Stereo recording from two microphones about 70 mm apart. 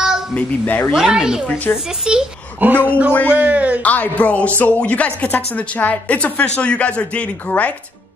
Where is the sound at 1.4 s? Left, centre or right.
Left.